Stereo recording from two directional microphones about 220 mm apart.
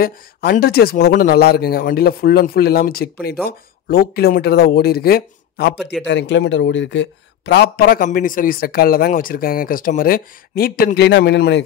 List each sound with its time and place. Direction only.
0.0 s speech: 40° left (ahead or behind)